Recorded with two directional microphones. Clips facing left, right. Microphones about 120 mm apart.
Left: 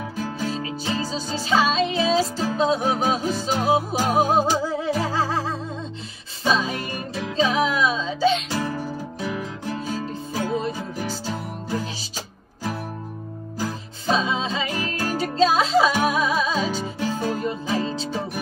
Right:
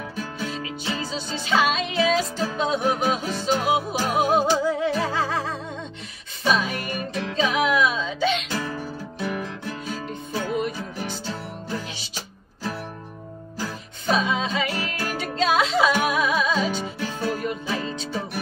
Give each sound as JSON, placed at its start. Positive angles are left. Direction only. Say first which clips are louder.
{"t": 0.4, "sound": "music", "louder": "left 3 dB", "side_deg": 35}
{"t": 10.5, "sound": "music", "louder": "left 1 dB", "side_deg": 35}
{"t": 13.7, "sound": "music", "louder": "left 1 dB", "side_deg": 30}